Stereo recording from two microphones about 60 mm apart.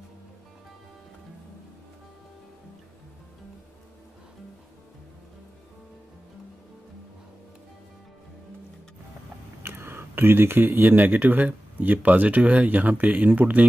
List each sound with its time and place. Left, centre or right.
9.6 s speech: right